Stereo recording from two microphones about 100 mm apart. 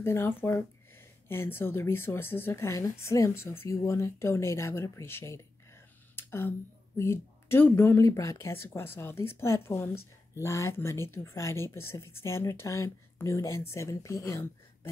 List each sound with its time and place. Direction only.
0.0 s a woman's voice: 25° left (ahead or behind)
6.1 s a sound: 25° left (ahead or behind)
7.0 s a woman's voice: 25° left (ahead or behind)